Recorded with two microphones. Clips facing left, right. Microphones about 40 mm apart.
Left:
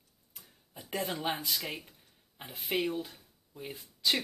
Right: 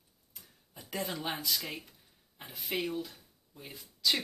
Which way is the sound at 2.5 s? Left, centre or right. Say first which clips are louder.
Left 3 dB; left.